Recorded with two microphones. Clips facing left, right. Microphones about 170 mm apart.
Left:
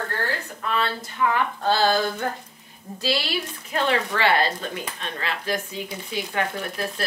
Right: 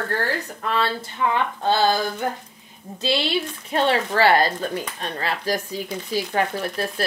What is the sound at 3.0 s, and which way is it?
Speech, 20° right (ahead or behind).